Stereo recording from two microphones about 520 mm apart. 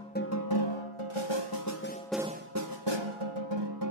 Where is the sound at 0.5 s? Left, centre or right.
Left.